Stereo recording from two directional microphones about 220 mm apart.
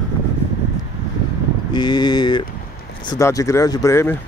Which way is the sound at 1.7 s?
20° left (ahead or behind).